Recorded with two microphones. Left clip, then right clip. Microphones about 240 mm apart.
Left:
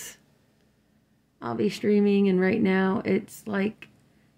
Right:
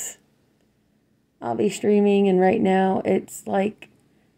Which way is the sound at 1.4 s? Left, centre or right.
Centre.